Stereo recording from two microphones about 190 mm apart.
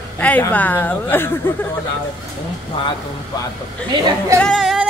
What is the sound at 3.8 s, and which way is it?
Speech, 25° right (ahead or behind).